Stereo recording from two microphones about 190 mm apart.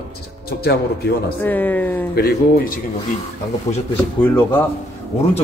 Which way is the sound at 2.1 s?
55° left (ahead or behind).